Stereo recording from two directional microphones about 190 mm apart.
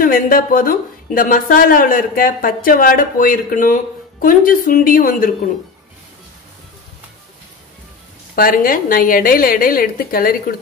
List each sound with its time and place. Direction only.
0.0 s a woman's voice: 45° left (ahead or behind)
8.4 s a woman's voice: 50° left (ahead or behind)